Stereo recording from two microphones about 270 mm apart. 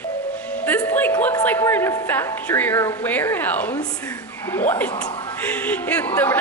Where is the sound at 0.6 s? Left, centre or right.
Centre.